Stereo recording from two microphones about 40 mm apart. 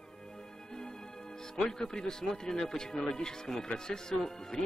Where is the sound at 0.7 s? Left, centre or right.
Centre.